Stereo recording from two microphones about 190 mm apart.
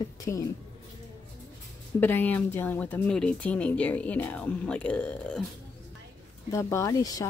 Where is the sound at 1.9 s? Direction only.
10° left (ahead or behind).